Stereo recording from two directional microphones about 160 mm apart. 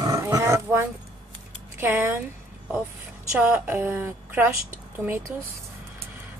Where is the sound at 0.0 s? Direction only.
20° right (ahead or behind).